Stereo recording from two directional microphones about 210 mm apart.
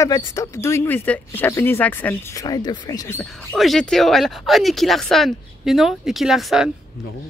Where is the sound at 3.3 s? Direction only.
Centre (ahead or behind).